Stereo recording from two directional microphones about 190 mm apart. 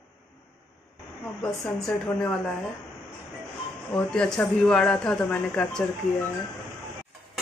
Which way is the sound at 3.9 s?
5° left (ahead or behind).